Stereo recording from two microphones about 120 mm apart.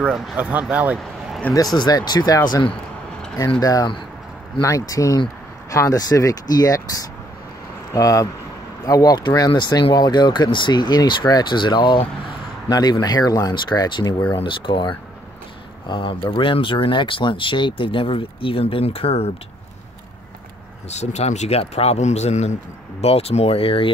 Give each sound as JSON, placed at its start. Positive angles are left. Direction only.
{"t": 0.0, "sound": "speech", "side_deg": -5}
{"t": 1.8, "sound": "speech", "side_deg": 35}
{"t": 7.9, "sound": "speech", "side_deg": 30}
{"t": 20.9, "sound": "speech", "side_deg": 65}